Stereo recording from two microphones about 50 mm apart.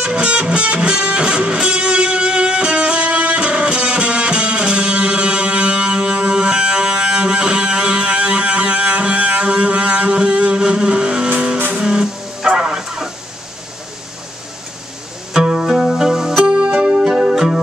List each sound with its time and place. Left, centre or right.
0.0 s music: centre
15.3 s music: centre
16.4 s music: right